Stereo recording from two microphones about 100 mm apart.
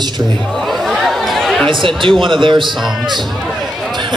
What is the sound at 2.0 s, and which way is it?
Speech, 55° right (ahead or behind).